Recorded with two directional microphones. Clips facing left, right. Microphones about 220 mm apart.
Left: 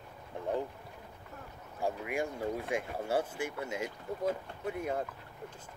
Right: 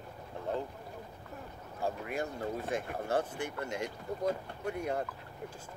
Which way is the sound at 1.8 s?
10° left (ahead or behind).